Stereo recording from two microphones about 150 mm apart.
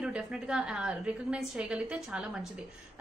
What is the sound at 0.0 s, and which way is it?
A woman's voice, 5° right (ahead or behind).